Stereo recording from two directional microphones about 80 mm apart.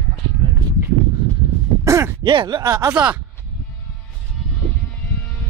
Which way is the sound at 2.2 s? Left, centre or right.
Right.